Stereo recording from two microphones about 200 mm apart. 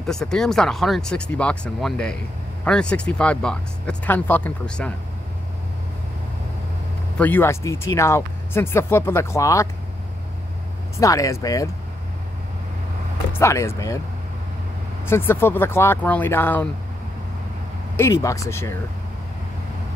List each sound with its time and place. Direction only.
0.0 s speech: 5° left (ahead or behind)
7.2 s speech: 10° left (ahead or behind)
11.0 s speech: 15° left (ahead or behind)
13.3 s speech: 15° left (ahead or behind)
15.0 s speech: 10° left (ahead or behind)
17.9 s speech: 15° left (ahead or behind)